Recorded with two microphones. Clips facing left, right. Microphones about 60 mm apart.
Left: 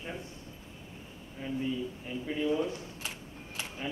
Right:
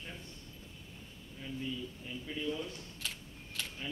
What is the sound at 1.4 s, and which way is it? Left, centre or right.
Speech, left.